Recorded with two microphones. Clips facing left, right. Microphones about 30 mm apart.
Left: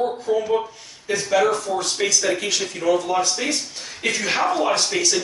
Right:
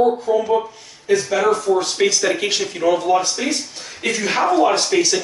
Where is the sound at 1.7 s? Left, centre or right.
Centre.